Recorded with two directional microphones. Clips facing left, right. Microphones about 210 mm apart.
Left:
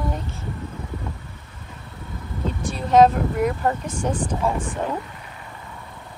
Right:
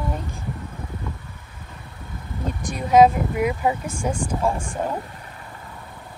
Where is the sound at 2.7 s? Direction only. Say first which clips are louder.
Even; 10° right (ahead or behind).